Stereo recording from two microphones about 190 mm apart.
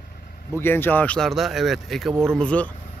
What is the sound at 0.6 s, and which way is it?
Speech, 10° left (ahead or behind).